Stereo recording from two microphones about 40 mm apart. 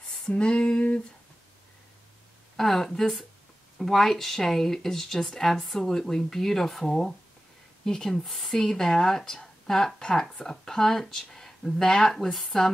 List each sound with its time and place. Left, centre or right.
0.3 s female singing: left
2.5 s speech: centre